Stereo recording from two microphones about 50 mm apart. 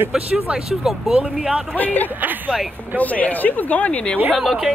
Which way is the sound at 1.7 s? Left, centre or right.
Left.